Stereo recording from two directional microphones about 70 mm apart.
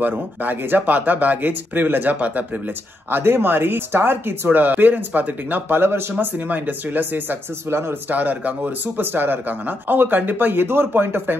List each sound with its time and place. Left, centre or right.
0.0 s speech: right
6.1 s speech: right